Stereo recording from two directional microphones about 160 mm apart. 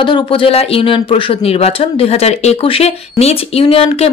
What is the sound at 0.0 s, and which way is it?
Speech, 30° left (ahead or behind).